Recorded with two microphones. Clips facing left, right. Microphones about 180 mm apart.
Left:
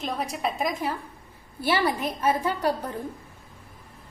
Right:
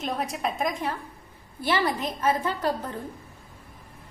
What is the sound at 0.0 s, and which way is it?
A woman's voice, centre (ahead or behind).